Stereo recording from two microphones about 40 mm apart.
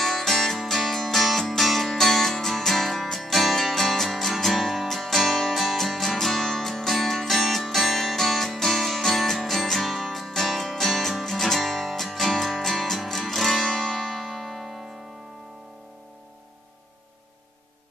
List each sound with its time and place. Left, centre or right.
0.0 s music: centre